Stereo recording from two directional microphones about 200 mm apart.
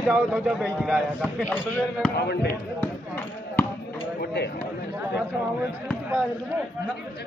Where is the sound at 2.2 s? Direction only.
55° left (ahead or behind).